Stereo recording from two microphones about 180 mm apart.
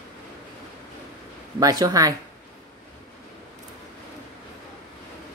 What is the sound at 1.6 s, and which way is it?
Speech, 20° right (ahead or behind).